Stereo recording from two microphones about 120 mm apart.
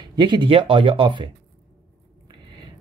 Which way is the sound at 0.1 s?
40° right (ahead or behind).